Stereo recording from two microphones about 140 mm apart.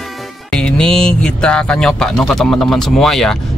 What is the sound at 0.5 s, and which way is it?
Speech, 5° left (ahead or behind).